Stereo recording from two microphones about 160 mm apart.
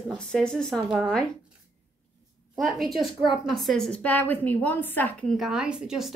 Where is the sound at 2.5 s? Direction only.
Centre (ahead or behind).